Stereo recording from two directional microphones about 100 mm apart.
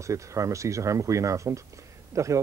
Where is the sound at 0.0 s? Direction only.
30° right (ahead or behind).